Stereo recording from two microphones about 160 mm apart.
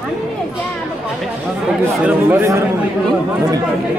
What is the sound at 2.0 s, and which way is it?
Speech, 15° right (ahead or behind).